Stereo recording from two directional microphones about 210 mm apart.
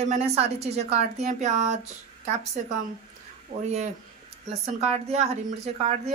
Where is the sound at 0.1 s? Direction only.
30° right (ahead or behind).